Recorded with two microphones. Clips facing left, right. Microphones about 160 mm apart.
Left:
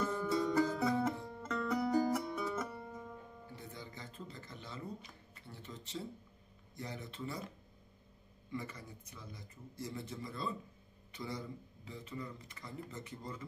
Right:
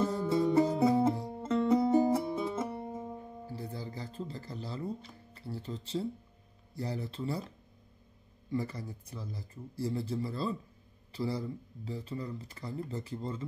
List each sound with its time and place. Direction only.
0.0 s music: 25° right (ahead or behind)
6.7 s speech: 35° right (ahead or behind)
8.5 s speech: 35° right (ahead or behind)